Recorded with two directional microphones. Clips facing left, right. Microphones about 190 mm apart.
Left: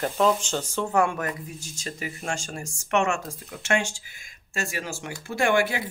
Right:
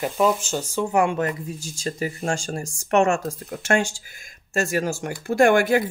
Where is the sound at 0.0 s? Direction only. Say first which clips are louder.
Right 2 dB; 10° right (ahead or behind).